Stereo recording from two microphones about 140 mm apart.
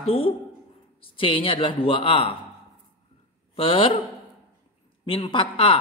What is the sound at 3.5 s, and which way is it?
Speech, 40° left (ahead or behind).